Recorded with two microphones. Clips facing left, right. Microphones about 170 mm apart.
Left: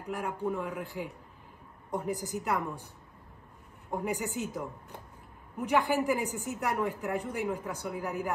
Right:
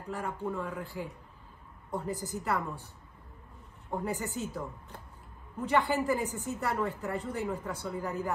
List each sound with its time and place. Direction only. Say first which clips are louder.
0.0 s speech: left 2 dB; 15° left (ahead or behind)
3.9 s speech: left 1 dB; 15° left (ahead or behind)